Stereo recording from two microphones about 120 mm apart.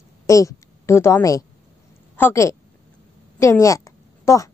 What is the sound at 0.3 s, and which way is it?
A woman's voice, 25° left (ahead or behind).